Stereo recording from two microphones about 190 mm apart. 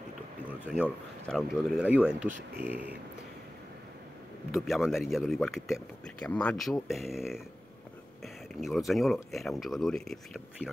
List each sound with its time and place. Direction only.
0.5 s a sound: 5° right (ahead or behind)
1.2 s speech: centre (ahead or behind)
2.2 s speech: 40° right (ahead or behind)
2.6 s speech: 10° right (ahead or behind)
4.5 s speech: centre (ahead or behind)
8.5 s speech: centre (ahead or behind)